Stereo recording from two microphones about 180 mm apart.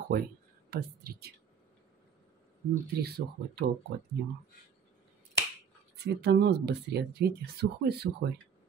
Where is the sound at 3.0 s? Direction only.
60° right (ahead or behind).